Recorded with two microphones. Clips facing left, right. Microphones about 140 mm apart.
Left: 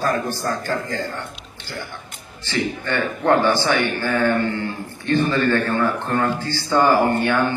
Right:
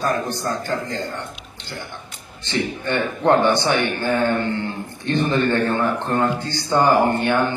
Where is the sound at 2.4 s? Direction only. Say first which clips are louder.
Even; 20° right (ahead or behind).